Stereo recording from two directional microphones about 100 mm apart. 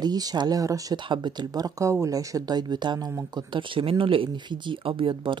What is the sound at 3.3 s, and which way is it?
Speech, 55° right (ahead or behind).